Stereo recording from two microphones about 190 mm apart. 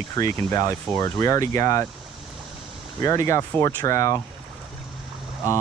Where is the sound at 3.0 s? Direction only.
15° left (ahead or behind).